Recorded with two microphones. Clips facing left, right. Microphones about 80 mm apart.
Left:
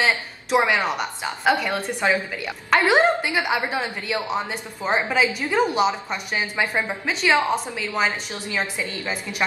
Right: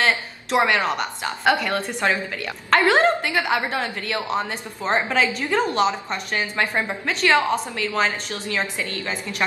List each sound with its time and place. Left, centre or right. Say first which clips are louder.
0.0 s a woman's voice: right 1 dB; centre